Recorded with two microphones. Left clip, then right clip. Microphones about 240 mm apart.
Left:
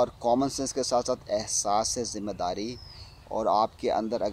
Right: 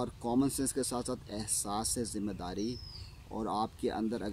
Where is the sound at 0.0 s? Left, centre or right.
Centre.